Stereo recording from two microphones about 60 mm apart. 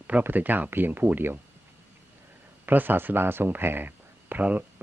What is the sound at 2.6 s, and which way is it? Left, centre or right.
Speech, right.